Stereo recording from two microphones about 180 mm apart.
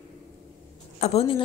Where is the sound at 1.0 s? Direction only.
35° left (ahead or behind).